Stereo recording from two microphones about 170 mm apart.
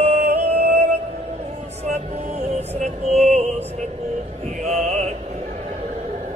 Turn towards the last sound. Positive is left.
turn(degrees=-40)  # may be behind; listen again after turning